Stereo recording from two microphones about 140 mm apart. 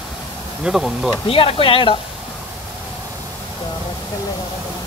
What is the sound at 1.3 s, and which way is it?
Speech, 40° left (ahead or behind).